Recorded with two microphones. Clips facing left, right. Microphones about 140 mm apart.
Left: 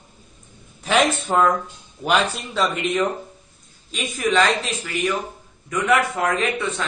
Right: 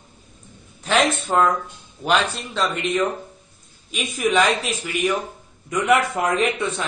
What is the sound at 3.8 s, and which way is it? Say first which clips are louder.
A man's voice: right 1 dB; 10° right (ahead or behind).